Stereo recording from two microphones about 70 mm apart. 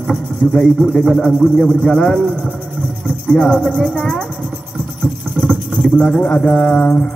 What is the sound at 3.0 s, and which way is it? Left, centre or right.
Speech, centre.